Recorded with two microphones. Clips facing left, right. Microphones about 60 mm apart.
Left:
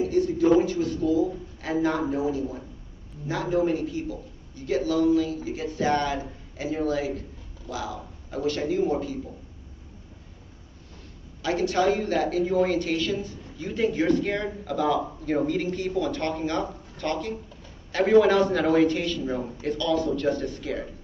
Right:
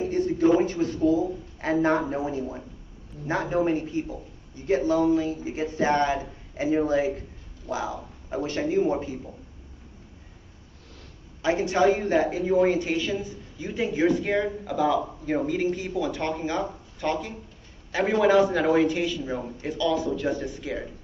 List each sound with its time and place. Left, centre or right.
0.0 s a man's voice: right
11.4 s a woman's voice: right